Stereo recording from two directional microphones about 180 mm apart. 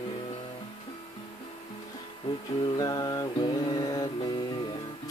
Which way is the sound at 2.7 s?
20° left (ahead or behind).